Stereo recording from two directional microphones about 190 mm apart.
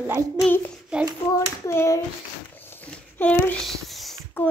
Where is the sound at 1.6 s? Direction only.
15° left (ahead or behind).